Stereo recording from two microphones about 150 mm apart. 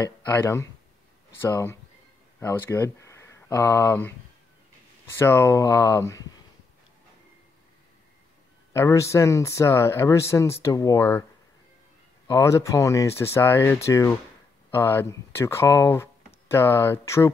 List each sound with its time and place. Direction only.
0.0 s speech: 20° left (ahead or behind)
5.1 s speech: 15° left (ahead or behind)
8.7 s speech: 20° left (ahead or behind)
12.3 s speech: 20° left (ahead or behind)